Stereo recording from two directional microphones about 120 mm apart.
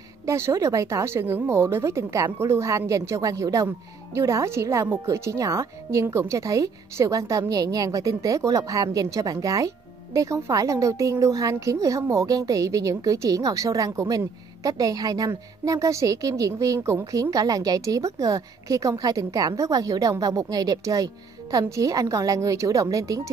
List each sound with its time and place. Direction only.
0.3 s a woman's voice: 25° right (ahead or behind)